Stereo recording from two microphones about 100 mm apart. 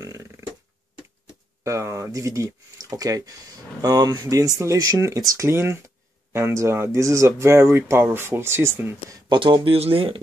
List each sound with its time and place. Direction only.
0.0 s a sound: 30° right (ahead or behind)
1.6 s speech: 30° right (ahead or behind)
9.3 s speech: 55° right (ahead or behind)